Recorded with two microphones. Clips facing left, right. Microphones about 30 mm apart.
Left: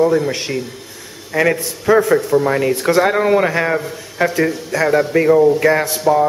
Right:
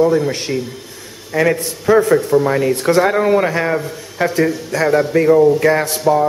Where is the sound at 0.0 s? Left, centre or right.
Centre.